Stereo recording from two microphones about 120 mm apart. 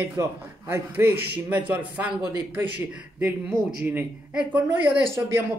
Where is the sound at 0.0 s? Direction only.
20° right (ahead or behind).